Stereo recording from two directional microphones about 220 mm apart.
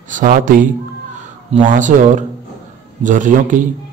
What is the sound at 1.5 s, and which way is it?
A man's voice, 35° right (ahead or behind).